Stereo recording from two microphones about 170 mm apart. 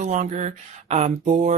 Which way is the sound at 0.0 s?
45° right (ahead or behind).